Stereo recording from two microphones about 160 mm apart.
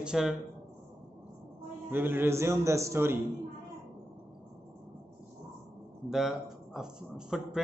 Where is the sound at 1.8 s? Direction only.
15° right (ahead or behind).